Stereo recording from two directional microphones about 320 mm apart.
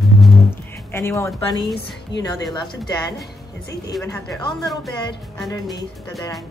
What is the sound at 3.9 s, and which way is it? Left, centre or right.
Music, centre.